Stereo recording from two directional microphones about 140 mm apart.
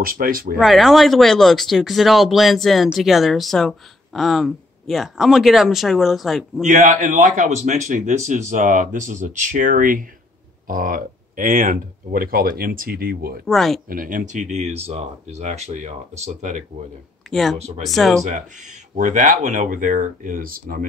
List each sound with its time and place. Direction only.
0.0 s speech: 90° right
0.6 s speech: centre (ahead or behind)
6.6 s a man's voice: 65° right (ahead or behind)
10.7 s speech: 90° right
13.5 s speech: centre (ahead or behind)
13.8 s a man's voice: 80° right; by 16.6 s 55° right (ahead or behind)
17.3 s speech: centre (ahead or behind)
18.9 s speech: 65° right (ahead or behind); by 20.8 s 85° right